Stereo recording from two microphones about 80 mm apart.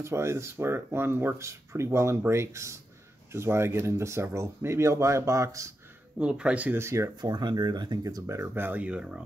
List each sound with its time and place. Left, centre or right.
0.0 s speech: right
6.1 s speech: centre
6.8 s speech: right
7.2 s speech: right
8.3 s speech: right; by 9.2 s centre